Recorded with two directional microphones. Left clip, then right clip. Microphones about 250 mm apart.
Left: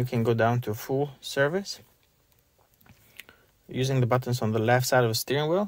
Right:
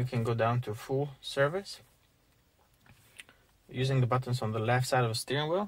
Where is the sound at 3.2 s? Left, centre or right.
Left.